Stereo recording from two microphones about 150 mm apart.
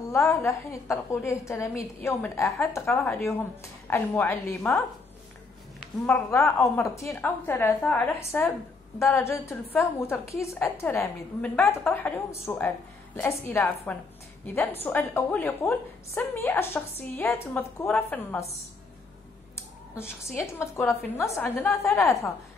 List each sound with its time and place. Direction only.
0.1 s a woman's voice: 20° left (ahead or behind)
6.0 s a woman's voice: 15° left (ahead or behind)
20.5 s a woman's voice: 15° left (ahead or behind)